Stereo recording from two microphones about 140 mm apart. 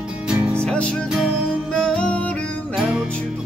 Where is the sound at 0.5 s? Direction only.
5° left (ahead or behind).